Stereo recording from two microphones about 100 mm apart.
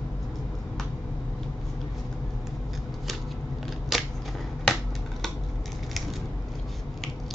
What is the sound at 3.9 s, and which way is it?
Typewriter, centre (ahead or behind).